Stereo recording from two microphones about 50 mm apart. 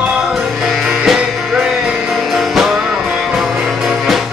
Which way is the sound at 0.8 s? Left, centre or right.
Centre.